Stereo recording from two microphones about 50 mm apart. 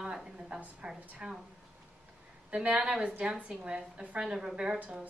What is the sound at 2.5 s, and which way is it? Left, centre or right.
Speech, right.